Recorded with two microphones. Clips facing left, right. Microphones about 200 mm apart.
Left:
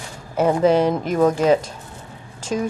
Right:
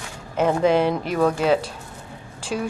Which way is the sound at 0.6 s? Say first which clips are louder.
Left 3 dB; 40° left (ahead or behind).